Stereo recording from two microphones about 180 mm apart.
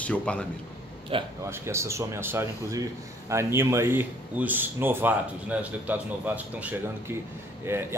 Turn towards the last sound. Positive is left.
turn(degrees=-15)  # may be behind; listen again after turning